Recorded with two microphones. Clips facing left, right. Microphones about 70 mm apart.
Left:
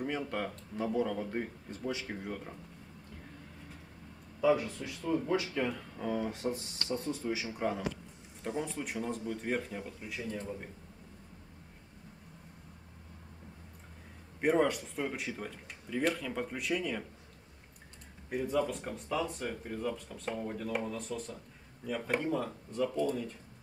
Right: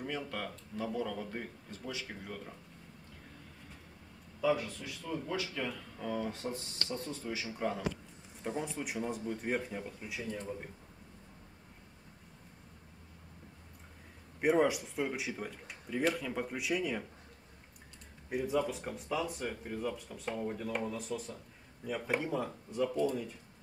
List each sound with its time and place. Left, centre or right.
0.3 s speech: centre
4.4 s speech: centre
8.5 s speech: centre
14.4 s speech: centre
18.3 s speech: centre